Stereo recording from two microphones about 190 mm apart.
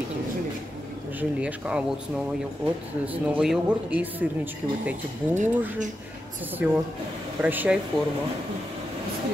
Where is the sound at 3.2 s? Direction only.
5° right (ahead or behind).